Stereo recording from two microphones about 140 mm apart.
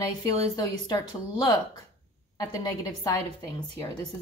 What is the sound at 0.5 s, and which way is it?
A woman's voice, 30° left (ahead or behind).